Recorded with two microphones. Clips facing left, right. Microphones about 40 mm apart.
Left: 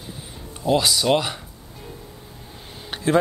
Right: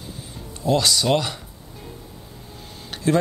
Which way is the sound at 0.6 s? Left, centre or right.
Centre.